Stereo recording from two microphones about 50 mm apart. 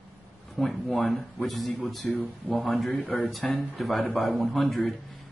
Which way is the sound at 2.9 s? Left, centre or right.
Left.